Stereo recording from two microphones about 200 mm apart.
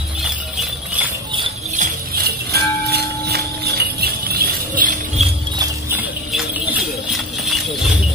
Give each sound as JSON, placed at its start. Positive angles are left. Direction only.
{"t": 1.8, "sound": "jingle bell", "side_deg": -50}